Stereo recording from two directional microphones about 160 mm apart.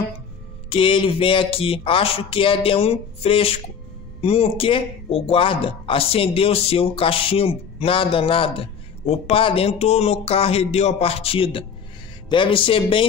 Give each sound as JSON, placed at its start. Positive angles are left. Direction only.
{"t": 0.7, "sound": "a man's voice", "side_deg": 35}